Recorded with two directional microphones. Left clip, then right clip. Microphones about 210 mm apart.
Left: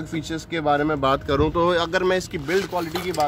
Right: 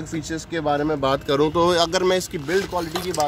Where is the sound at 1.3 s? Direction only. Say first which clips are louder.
Right 1 dB; 20° right (ahead or behind).